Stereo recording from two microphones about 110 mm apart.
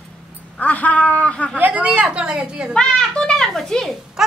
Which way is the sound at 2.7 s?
5° left (ahead or behind).